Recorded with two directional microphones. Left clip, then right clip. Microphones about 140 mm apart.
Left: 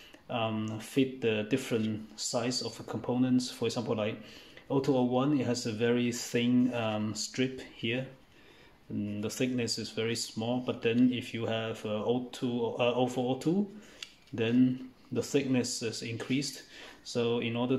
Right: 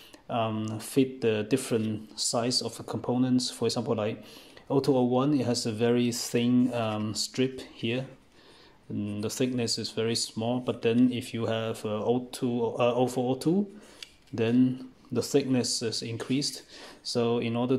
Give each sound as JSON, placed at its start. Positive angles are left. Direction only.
{"t": 0.3, "sound": "speech", "side_deg": -45}
{"t": 9.0, "sound": "speech", "side_deg": -40}